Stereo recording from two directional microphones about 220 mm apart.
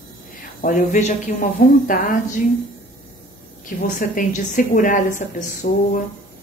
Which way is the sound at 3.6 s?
35° left (ahead or behind).